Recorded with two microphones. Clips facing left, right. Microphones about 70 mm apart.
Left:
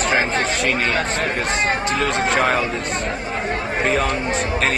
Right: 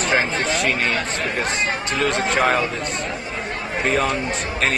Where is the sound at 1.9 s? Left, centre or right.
Centre.